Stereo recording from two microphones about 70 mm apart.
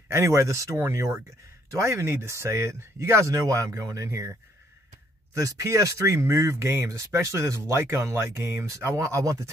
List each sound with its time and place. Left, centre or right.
0.1 s speech: right
5.6 s speech: right